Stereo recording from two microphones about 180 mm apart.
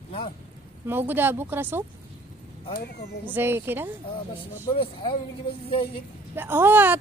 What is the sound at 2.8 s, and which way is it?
Speech, 65° left (ahead or behind).